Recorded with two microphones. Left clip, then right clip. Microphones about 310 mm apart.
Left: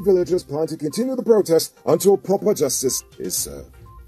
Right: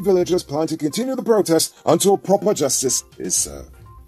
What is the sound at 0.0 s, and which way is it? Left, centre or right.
Speech, right.